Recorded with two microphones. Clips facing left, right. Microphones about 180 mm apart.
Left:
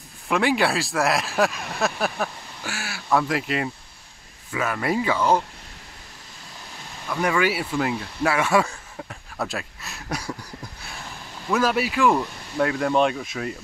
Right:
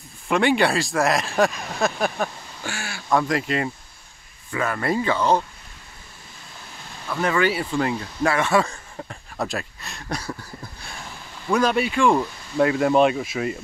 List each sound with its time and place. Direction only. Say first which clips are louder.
0.3 s speech: right 2 dB; centre (ahead or behind)
7.1 s speech: right 1 dB; 10° left (ahead or behind)
11.5 s speech: right 2 dB; 5° left (ahead or behind)